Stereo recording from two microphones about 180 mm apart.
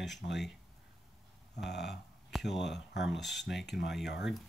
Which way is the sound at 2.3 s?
Centre (ahead or behind).